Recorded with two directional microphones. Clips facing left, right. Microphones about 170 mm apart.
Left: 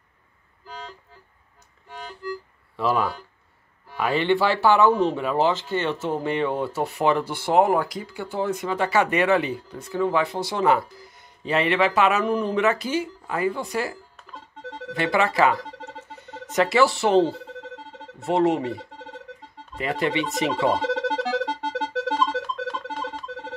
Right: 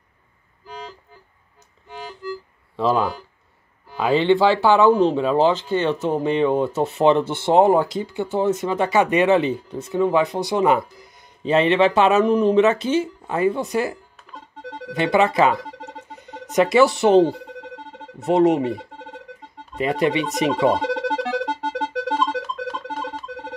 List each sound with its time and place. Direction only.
0.7 s music: centre (ahead or behind)
2.2 s music: centre (ahead or behind)
2.7 s speech: 20° right (ahead or behind)
15.0 s speech: 20° right (ahead or behind)
20.8 s music: centre (ahead or behind)